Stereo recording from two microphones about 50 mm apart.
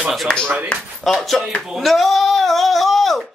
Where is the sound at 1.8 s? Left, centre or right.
Centre.